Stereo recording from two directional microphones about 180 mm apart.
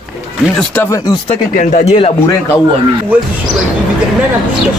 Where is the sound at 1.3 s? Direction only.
40° left (ahead or behind).